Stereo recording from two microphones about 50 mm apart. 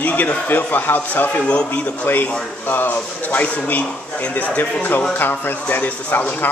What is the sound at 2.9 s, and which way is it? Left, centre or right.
Speech, left.